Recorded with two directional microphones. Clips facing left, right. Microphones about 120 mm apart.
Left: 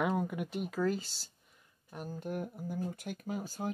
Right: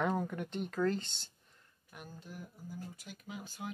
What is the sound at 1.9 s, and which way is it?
Speech, 40° left (ahead or behind).